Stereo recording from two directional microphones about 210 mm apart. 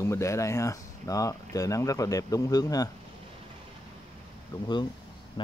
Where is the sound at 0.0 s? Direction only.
15° left (ahead or behind).